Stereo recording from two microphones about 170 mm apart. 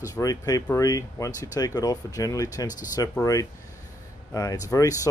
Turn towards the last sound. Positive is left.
turn(degrees=20)  # may be behind; listen again after turning